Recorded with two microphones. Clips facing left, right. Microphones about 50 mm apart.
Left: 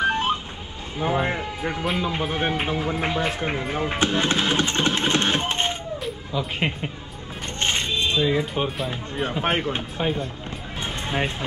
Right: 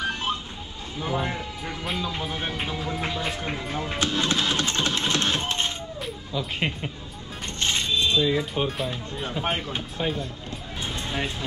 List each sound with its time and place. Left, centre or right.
0.0 s a sound: left
0.9 s speech: left
7.6 s music: left
9.1 s speech: left
10.8 s music: left